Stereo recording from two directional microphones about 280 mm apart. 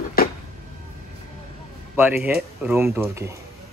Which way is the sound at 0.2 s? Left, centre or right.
Left.